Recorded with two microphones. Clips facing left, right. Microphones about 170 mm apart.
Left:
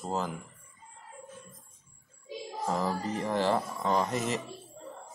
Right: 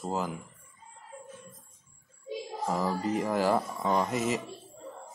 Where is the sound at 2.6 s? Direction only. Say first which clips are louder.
Right 1 dB; centre (ahead or behind).